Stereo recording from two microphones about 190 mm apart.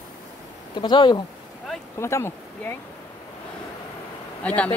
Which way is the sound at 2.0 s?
15° left (ahead or behind).